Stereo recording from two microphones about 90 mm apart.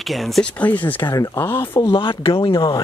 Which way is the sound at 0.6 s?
20° left (ahead or behind).